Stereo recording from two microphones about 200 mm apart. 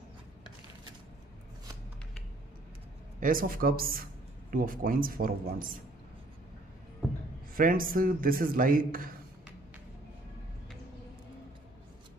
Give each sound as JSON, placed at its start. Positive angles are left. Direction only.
{"t": 3.2, "sound": "speech", "side_deg": -45}
{"t": 7.5, "sound": "a man's voice", "side_deg": -45}